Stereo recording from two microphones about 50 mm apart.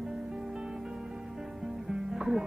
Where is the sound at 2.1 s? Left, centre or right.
Centre.